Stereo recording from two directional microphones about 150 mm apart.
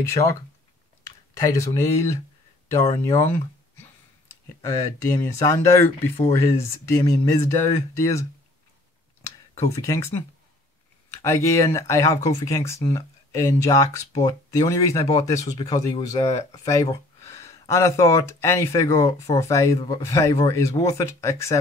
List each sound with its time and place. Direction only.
0.1 s speech: 20° left (ahead or behind)
1.4 s speech: 20° left (ahead or behind)
9.8 s speech: 20° left (ahead or behind)